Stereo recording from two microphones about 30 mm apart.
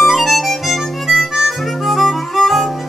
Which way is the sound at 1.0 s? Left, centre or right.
Centre.